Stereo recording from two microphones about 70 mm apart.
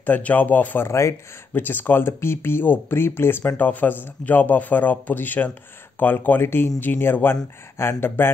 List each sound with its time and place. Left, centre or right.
0.0 s speech: left
0.8 s speech: left
1.5 s speech: left